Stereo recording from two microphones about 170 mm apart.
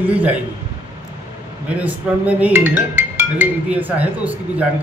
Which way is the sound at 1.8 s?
10° right (ahead or behind).